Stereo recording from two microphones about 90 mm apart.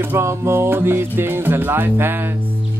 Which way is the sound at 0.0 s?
30° right (ahead or behind).